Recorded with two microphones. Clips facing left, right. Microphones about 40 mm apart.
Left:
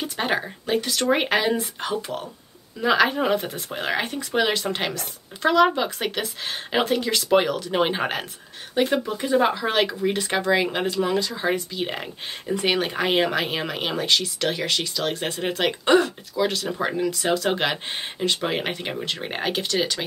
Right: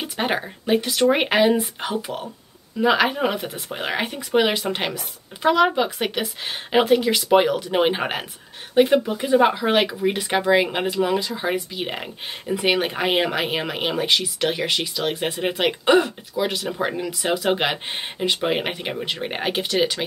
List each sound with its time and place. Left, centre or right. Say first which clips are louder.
0.0 s speech: right 1 dB; centre